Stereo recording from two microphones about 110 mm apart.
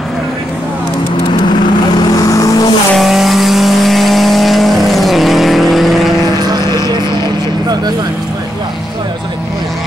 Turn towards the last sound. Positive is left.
turn(degrees=-40)  # may be behind; listen again after turning